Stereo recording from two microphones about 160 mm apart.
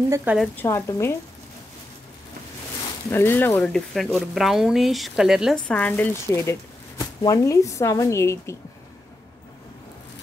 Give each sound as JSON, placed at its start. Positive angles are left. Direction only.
{"t": 0.1, "sound": "speech", "side_deg": -10}
{"t": 0.6, "sound": "speech", "side_deg": 20}
{"t": 3.1, "sound": "speech", "side_deg": 15}
{"t": 5.7, "sound": "speech", "side_deg": 10}